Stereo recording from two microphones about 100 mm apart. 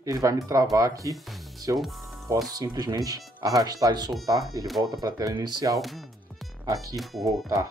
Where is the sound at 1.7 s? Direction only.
Centre (ahead or behind).